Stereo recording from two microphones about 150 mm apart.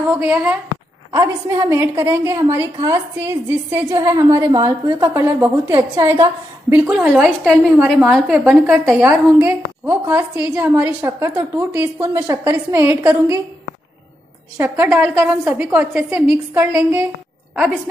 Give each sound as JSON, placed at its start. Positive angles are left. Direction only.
{"t": 0.1, "sound": "a woman's voice", "side_deg": -5}
{"t": 1.1, "sound": "a woman's voice", "side_deg": -20}
{"t": 14.6, "sound": "a woman's voice", "side_deg": -15}